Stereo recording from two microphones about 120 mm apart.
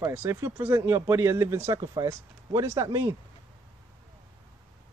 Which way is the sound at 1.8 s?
35° right (ahead or behind).